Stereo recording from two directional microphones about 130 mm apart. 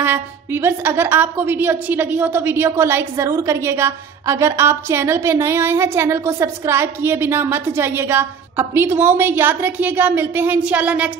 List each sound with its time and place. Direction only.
0.0 s a woman's voice: 20° right (ahead or behind)